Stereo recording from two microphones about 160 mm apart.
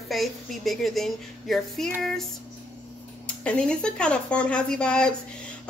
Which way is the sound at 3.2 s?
5° left (ahead or behind).